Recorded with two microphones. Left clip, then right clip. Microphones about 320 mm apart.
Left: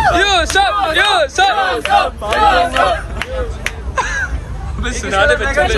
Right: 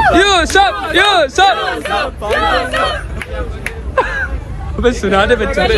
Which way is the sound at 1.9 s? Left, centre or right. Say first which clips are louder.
Left 3 dB; left.